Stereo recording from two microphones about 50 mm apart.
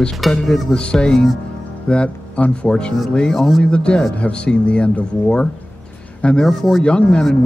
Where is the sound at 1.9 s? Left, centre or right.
Left.